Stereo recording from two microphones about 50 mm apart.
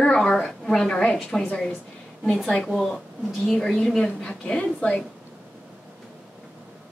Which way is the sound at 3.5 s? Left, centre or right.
Centre.